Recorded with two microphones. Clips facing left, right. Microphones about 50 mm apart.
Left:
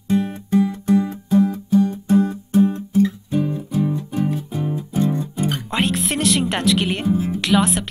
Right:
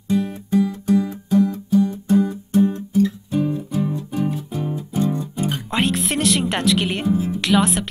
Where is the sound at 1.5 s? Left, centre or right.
Centre.